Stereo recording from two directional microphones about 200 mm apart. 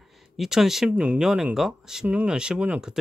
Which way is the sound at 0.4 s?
Centre (ahead or behind).